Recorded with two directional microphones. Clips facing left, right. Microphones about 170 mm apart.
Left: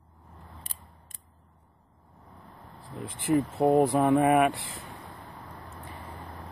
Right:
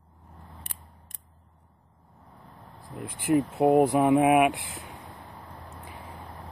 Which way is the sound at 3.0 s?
5° right (ahead or behind).